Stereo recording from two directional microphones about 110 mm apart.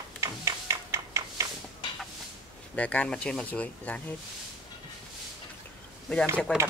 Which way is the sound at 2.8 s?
10° left (ahead or behind).